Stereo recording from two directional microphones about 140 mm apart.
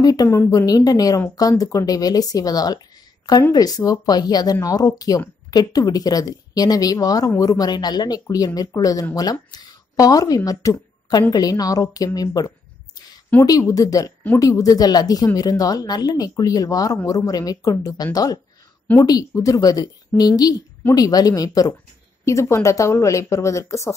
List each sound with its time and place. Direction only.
0.0 s speech: 25° left (ahead or behind)